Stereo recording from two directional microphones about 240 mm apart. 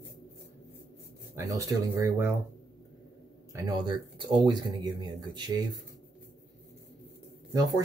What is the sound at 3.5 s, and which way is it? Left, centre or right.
Speech, centre.